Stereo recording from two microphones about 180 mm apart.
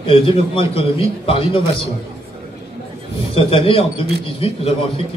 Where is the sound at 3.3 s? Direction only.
30° left (ahead or behind).